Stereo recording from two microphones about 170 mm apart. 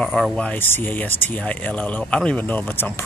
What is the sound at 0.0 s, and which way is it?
Speech, 5° left (ahead or behind).